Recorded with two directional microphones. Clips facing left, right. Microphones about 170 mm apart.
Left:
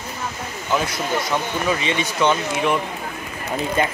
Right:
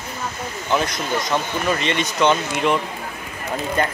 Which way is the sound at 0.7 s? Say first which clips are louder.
Even; 5° left (ahead or behind).